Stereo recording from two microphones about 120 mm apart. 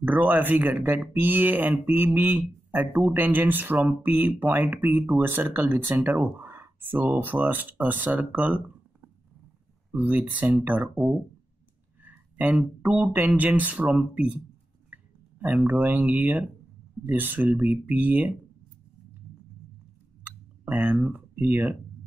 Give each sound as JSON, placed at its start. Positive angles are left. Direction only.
{"t": 0.0, "sound": "speech", "side_deg": -15}
{"t": 9.8, "sound": "speech", "side_deg": -15}
{"t": 12.0, "sound": "speech", "side_deg": -10}
{"t": 20.2, "sound": "a sound", "side_deg": -15}